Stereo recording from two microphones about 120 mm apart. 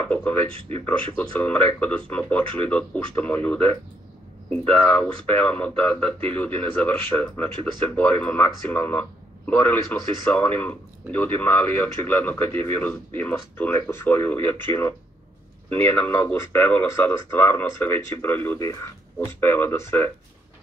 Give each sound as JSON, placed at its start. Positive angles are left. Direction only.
{"t": 0.1, "sound": "speech", "side_deg": 15}
{"t": 0.5, "sound": "speech", "side_deg": -50}
{"t": 0.8, "sound": "speech", "side_deg": 10}